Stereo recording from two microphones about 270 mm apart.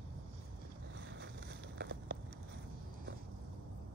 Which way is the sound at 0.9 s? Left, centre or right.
Right.